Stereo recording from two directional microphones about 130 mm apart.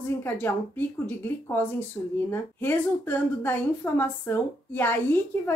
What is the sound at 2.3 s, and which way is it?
A woman's voice, 15° left (ahead or behind).